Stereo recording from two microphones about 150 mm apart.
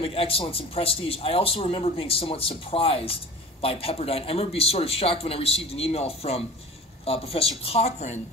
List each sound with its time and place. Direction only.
0.0 s a man's voice: 40° left (ahead or behind)